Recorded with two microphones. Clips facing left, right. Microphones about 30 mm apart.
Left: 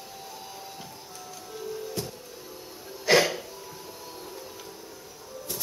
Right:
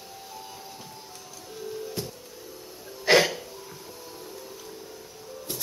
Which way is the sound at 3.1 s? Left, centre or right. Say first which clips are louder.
Right 1 dB; right.